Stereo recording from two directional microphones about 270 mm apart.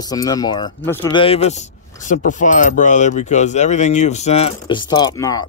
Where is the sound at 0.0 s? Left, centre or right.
Centre.